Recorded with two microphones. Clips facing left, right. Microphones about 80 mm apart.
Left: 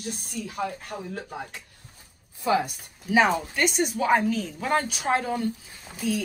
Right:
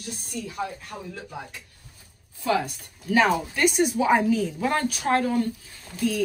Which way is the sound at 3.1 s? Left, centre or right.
Centre.